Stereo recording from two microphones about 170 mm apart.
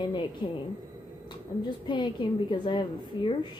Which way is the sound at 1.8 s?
30° left (ahead or behind).